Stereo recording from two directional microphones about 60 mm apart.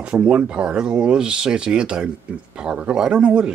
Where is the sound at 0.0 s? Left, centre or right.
Centre.